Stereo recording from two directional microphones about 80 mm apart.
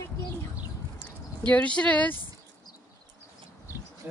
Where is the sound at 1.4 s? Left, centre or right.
Centre.